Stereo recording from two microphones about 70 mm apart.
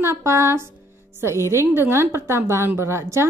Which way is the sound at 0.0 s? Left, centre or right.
Right.